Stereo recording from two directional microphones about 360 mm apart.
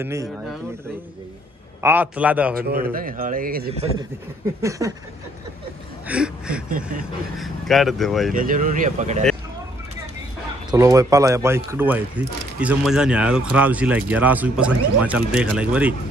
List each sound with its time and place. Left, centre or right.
0.0 s a sound: centre
1.8 s speech: centre
2.5 s speech: right
4.6 s a sound: centre
6.0 s speech: centre
8.3 s speech: right
10.7 s speech: centre